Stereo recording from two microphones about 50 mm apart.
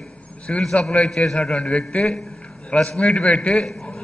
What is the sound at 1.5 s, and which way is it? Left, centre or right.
A man's voice, left.